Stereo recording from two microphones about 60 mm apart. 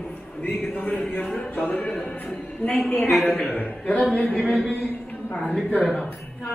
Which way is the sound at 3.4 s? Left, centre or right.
Left.